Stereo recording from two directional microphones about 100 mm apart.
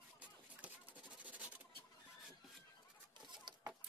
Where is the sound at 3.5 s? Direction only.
45° right (ahead or behind).